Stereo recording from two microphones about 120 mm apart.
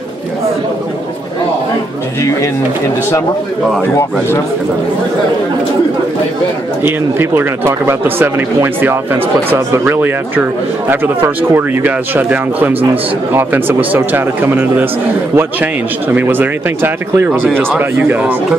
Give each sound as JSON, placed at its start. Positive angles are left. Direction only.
{"t": 3.8, "sound": "a man's voice", "side_deg": 20}
{"t": 6.8, "sound": "a man's voice", "side_deg": -20}